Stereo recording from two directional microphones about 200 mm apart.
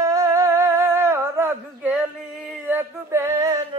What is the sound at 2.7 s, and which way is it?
Music, 10° right (ahead or behind).